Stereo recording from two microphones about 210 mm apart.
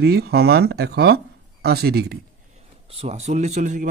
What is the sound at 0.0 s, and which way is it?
Speech, 50° right (ahead or behind).